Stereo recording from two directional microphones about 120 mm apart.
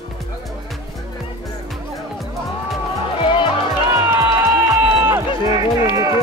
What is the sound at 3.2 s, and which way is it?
Music, 40° left (ahead or behind).